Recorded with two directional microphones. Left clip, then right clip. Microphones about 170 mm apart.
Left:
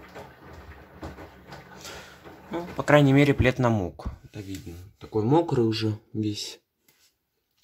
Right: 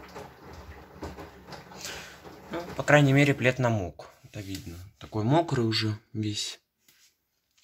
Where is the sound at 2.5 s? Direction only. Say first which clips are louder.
Left 2 dB; 15° left (ahead or behind).